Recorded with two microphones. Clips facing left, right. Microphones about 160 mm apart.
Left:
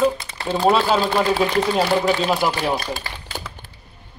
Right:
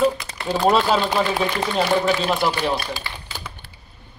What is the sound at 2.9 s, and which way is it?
Typewriter, 45° left (ahead or behind).